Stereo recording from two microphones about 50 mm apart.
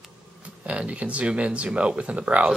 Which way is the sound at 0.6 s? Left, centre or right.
Right.